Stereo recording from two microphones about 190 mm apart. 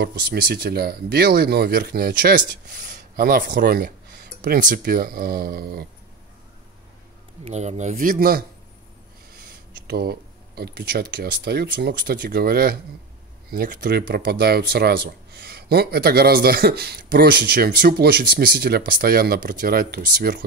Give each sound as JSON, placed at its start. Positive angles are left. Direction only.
{"t": 0.0, "sound": "speech", "side_deg": -55}
{"t": 7.4, "sound": "speech", "side_deg": -35}